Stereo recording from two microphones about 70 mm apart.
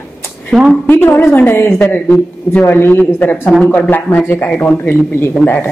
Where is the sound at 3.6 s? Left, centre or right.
Centre.